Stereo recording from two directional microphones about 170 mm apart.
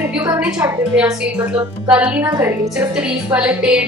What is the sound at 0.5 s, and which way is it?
Speech, 20° right (ahead or behind).